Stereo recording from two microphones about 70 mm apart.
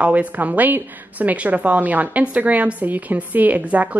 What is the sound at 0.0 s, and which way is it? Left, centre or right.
A woman's voice, right.